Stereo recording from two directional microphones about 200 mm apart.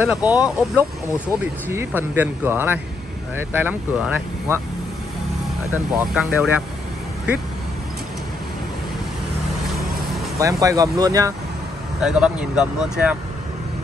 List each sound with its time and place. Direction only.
0.0 s speech: 10° right (ahead or behind)
5.9 s speech: 5° right (ahead or behind)
10.4 s speech: 15° right (ahead or behind)
12.0 s speech: 5° right (ahead or behind)